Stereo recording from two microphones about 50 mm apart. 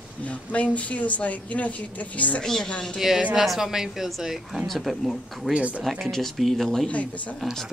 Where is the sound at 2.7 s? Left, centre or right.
Left.